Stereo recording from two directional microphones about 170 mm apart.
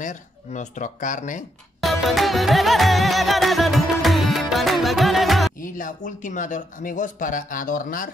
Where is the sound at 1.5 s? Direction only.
Centre (ahead or behind).